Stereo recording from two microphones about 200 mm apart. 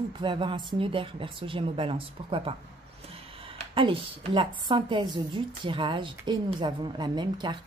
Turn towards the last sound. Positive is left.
turn(degrees=-20)  # may be behind; listen again after turning